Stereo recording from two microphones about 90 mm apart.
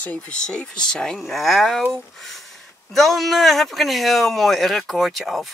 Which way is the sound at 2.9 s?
Centre (ahead or behind).